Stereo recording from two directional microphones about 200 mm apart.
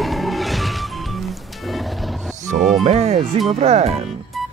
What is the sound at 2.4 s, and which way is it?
Music, 35° right (ahead or behind).